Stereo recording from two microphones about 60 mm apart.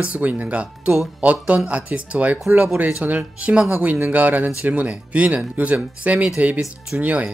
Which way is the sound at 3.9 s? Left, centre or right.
Right.